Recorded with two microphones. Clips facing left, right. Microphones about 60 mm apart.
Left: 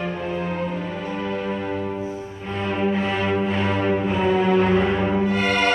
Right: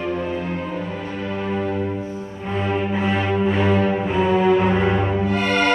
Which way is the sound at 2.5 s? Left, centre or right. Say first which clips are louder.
Right 1 dB; centre.